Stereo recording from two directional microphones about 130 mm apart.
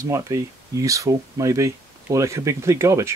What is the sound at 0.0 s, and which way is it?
Speech, 25° right (ahead or behind).